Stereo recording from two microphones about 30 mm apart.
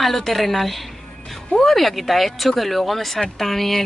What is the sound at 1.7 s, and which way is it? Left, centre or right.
Speech, centre.